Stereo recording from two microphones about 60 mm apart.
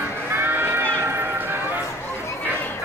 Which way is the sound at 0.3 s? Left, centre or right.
Right.